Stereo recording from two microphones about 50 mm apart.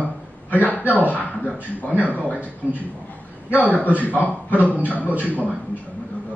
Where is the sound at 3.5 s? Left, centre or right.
Left.